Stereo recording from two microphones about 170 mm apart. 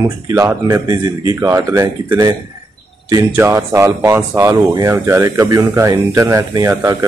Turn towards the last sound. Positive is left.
turn(degrees=-20)  # may be behind; listen again after turning